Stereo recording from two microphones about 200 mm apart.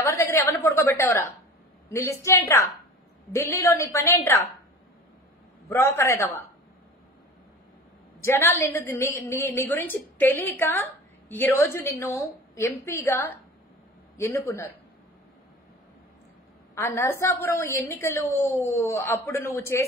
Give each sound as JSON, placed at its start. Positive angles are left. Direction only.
{"t": 0.0, "sound": "a woman's voice", "side_deg": 15}
{"t": 5.7, "sound": "a woman's voice", "side_deg": 10}
{"t": 8.2, "sound": "a woman's voice", "side_deg": 15}
{"t": 16.7, "sound": "a woman's voice", "side_deg": 15}